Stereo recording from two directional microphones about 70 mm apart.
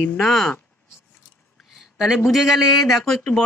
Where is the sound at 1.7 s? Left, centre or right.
Centre.